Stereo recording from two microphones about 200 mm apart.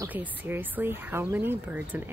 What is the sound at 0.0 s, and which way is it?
Speech, 10° right (ahead or behind).